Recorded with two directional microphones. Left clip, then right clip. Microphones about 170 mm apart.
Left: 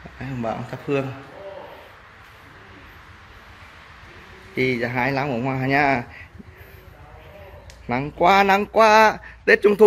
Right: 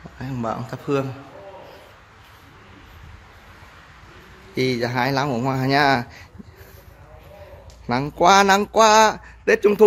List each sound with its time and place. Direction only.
0.2 s speech: 25° right (ahead or behind)
4.6 s speech: 20° right (ahead or behind)
7.9 s speech: 20° right (ahead or behind)